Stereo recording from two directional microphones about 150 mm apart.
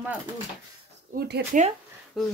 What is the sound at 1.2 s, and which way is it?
Speech, 90° right.